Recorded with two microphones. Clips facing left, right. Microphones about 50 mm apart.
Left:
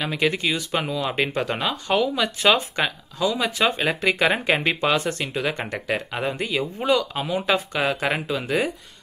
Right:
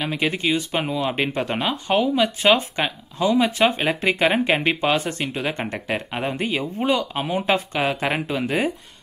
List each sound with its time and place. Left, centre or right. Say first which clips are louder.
0.0 s speech: even; centre; by 8.7 s right